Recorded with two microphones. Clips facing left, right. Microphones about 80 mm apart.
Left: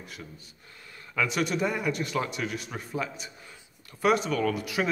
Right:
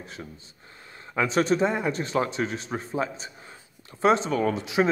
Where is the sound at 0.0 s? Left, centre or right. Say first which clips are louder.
Right 3 dB; right.